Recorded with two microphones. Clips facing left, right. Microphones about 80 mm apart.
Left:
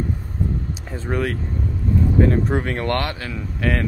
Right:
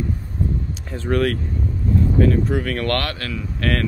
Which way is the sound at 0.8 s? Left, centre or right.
Centre.